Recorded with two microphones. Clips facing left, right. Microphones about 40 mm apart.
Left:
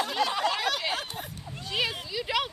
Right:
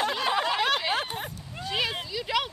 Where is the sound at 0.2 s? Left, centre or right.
Right.